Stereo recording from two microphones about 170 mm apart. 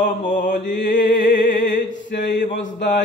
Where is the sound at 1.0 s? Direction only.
90° left.